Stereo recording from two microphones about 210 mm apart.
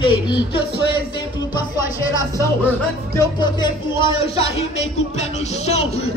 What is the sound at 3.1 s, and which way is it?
A man's voice, 20° left (ahead or behind).